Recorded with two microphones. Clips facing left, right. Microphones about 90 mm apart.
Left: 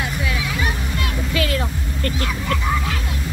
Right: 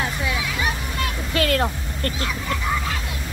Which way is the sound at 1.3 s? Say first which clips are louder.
Right 3 dB; 50° right (ahead or behind).